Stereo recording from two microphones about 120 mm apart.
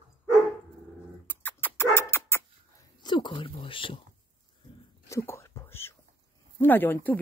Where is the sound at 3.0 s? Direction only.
40° left (ahead or behind).